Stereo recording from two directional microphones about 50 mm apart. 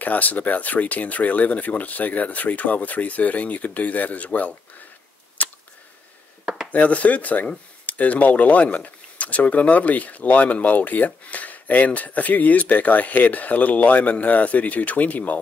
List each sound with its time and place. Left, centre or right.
0.0 s speech: left
5.4 s a sound: left
6.7 s speech: left